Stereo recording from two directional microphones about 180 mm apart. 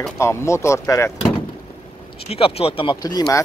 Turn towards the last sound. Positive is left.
turn(degrees=20)  # may be behind; listen again after turning